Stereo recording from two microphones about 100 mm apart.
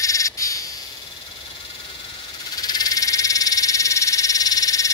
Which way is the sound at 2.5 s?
40° left (ahead or behind).